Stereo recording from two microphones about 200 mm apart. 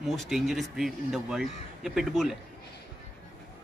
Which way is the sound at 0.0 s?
Centre (ahead or behind).